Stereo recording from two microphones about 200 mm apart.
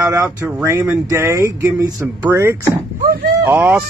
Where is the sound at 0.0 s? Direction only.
15° right (ahead or behind).